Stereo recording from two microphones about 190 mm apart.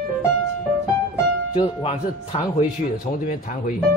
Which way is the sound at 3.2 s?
45° left (ahead or behind).